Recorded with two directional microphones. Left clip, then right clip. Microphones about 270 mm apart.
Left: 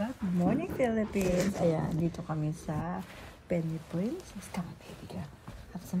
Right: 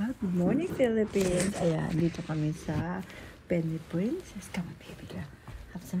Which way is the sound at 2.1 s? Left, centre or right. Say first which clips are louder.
Right 3 dB; right.